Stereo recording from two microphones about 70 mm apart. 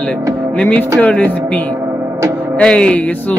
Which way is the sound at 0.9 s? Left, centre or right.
Left.